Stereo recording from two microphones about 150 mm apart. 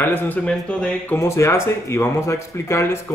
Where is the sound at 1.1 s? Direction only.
20° left (ahead or behind).